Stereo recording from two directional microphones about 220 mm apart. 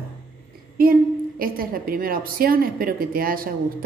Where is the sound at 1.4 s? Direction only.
40° right (ahead or behind).